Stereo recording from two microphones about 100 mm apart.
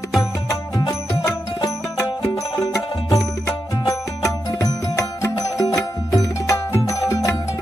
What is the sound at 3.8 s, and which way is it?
Music, 35° left (ahead or behind).